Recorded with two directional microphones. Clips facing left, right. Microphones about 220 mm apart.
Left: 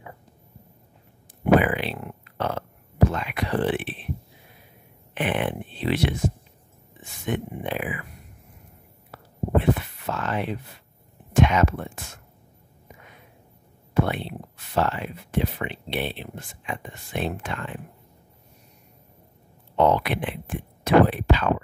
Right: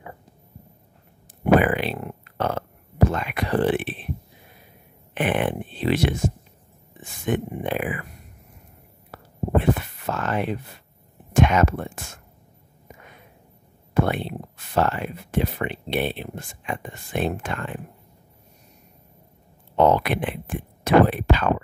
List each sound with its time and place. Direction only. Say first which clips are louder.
1.4 s a sound: right 1 dB; 45° right (ahead or behind)
3.1 s speech: right 2 dB; 50° right (ahead or behind)
5.1 s speech: right 3 dB; 50° right (ahead or behind)
9.1 s whispering: right 1 dB; 45° right (ahead or behind)
11.3 s speech: right 1 dB; 50° right (ahead or behind)
13.9 s speech: right 2 dB; 50° right (ahead or behind)
19.8 s speech: right 2 dB; 45° right (ahead or behind)